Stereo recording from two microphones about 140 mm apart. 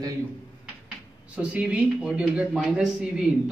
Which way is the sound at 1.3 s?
10° right (ahead or behind).